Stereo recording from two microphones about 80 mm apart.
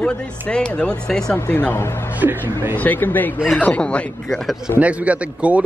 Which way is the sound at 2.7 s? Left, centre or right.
Left.